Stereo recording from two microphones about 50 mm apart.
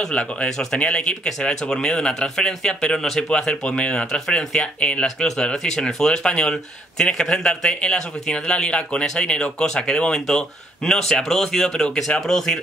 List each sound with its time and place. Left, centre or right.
0.1 s speech: left
0.5 s speech: centre
0.7 s speech: left
5.0 s speech: centre